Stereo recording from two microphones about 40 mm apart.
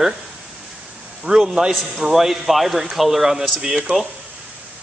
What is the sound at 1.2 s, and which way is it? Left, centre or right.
A man's voice, centre.